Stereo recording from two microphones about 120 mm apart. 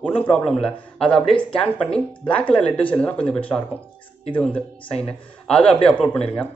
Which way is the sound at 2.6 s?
45° left (ahead or behind).